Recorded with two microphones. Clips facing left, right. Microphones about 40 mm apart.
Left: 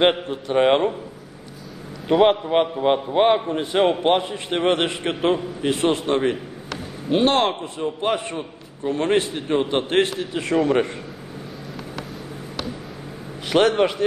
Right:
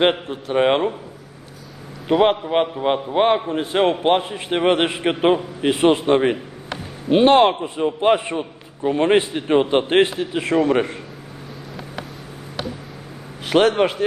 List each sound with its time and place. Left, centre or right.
0.0 s a man's voice: centre
2.0 s a man's voice: centre; by 10.1 s right
10.1 s a man's voice: centre
13.5 s a man's voice: centre